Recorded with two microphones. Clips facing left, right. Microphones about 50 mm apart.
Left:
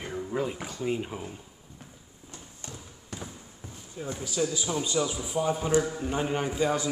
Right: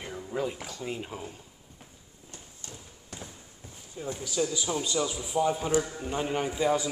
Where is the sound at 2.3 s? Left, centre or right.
Left.